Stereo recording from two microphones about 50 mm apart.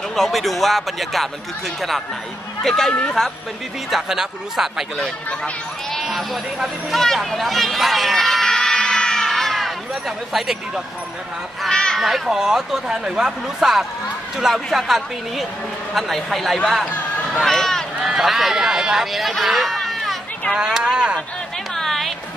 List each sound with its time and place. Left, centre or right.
0.1 s speech: centre
2.6 s speech: centre
3.9 s speech: centre
5.9 s speech: centre
10.0 s speech: centre
11.7 s a sound: centre
12.0 s speech: centre
18.0 s speech: centre
20.5 s speech: centre
21.7 s music: centre